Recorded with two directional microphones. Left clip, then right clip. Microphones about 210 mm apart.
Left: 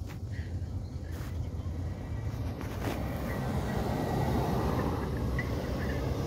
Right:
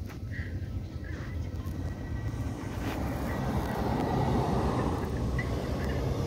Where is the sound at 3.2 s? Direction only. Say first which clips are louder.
Right 2 dB; 30° left (ahead or behind).